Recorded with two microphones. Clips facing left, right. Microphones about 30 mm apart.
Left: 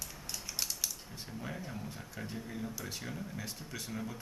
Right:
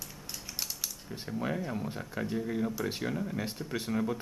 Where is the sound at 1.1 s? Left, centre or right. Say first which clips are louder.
Right 9 dB; right.